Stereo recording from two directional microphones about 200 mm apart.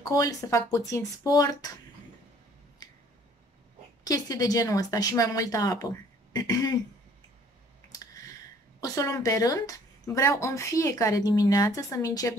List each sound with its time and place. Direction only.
0.1 s speech: 15° left (ahead or behind)
2.8 s finger snapping: 20° left (ahead or behind)
4.0 s speech: 20° left (ahead or behind)
8.8 s speech: 15° left (ahead or behind)